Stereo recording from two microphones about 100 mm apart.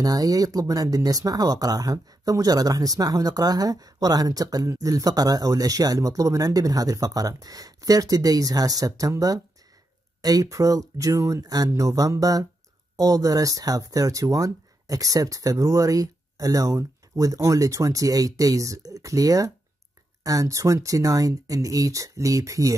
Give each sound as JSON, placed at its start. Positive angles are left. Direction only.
{"t": 0.0, "sound": "speech", "side_deg": -40}